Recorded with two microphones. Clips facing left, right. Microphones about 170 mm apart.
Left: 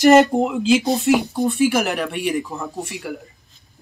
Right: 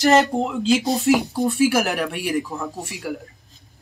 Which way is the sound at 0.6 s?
Centre (ahead or behind).